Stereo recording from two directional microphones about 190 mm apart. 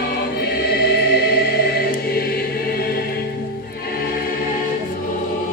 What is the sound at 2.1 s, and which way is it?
Choir, 55° left (ahead or behind).